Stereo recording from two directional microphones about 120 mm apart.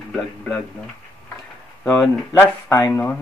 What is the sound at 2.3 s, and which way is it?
Speech, 20° left (ahead or behind).